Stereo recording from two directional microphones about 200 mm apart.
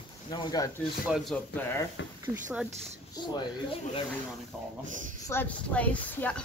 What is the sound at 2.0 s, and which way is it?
Speech, 65° left (ahead or behind).